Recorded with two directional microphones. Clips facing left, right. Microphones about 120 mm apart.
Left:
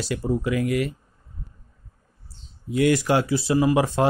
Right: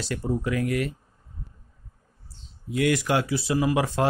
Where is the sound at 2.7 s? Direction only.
30° left (ahead or behind).